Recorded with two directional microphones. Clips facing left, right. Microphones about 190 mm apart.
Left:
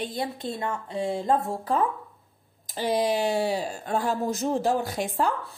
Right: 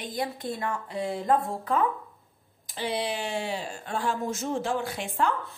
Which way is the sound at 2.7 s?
40° left (ahead or behind).